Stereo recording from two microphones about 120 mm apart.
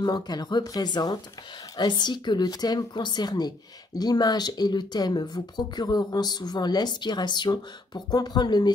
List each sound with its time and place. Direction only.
0.0 s speech: 35° left (ahead or behind)